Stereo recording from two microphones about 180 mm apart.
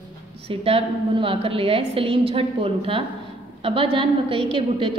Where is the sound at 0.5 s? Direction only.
30° right (ahead or behind).